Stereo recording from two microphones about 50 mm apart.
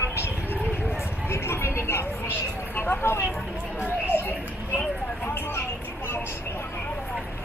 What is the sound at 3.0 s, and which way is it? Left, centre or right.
Speech, left.